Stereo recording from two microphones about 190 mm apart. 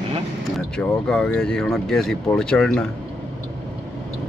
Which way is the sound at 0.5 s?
5° left (ahead or behind).